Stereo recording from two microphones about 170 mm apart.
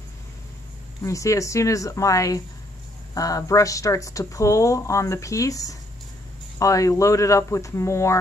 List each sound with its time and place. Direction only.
1.0 s speech: 20° left (ahead or behind)